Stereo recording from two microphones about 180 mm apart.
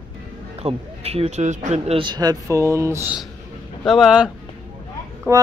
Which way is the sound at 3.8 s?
Centre (ahead or behind).